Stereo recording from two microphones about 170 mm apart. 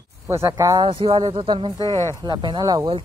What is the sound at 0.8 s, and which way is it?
Speech, 30° right (ahead or behind).